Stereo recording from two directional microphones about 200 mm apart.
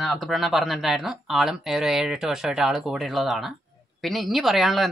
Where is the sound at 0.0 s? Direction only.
Centre (ahead or behind).